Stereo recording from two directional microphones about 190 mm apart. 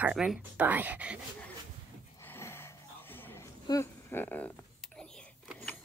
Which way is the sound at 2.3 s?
10° left (ahead or behind).